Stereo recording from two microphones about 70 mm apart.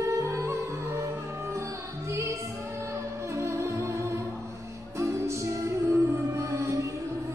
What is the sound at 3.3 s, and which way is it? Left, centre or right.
Music, right.